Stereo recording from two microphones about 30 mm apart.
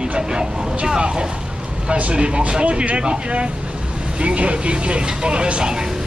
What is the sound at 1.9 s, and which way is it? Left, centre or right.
Speech, right.